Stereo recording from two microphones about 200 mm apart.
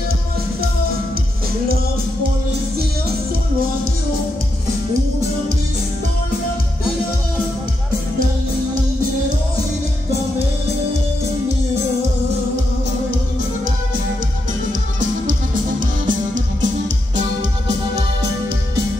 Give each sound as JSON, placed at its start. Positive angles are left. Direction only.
{"t": 14.7, "sound": "music", "side_deg": -40}